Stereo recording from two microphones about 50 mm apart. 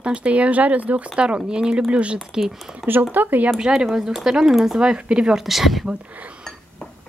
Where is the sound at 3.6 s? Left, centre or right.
Centre.